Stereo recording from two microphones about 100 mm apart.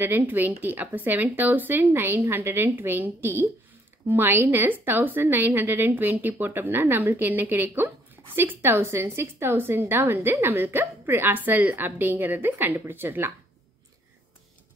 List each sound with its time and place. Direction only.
0.0 s a woman's voice: 20° right (ahead or behind)